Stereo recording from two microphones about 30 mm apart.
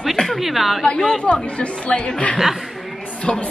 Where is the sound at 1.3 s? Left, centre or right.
Left.